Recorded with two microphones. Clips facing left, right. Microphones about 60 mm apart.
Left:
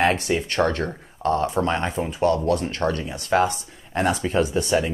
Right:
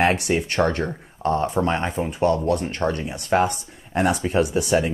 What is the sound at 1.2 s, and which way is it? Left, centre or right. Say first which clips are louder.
Speech: even; right.